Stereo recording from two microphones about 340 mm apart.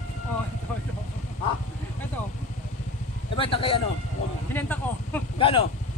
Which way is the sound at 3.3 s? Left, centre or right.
Centre.